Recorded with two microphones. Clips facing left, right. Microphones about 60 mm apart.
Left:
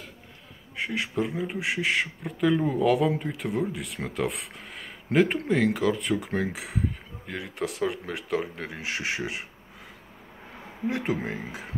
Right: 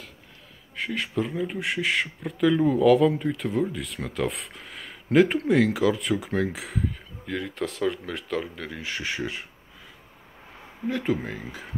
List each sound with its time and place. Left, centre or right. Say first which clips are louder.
0.8 s speech: even; centre
8.4 s speech: right 1 dB; left
10.9 s speech: right 2 dB; centre